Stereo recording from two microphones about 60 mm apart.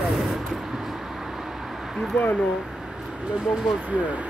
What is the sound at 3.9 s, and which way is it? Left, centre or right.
Speech, right.